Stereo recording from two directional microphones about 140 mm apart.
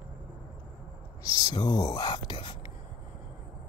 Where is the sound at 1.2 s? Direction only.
30° left (ahead or behind).